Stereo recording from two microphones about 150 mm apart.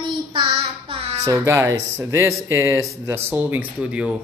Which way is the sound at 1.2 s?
20° right (ahead or behind).